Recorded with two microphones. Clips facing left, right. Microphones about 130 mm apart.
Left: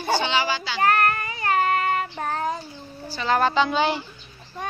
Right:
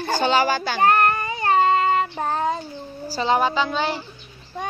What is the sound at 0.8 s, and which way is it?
Child singing, 30° right (ahead or behind).